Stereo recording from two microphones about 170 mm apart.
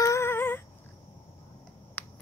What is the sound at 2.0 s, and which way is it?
Finger snapping, 10° left (ahead or behind).